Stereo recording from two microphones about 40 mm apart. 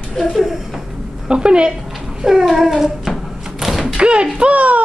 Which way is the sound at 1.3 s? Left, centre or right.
Right.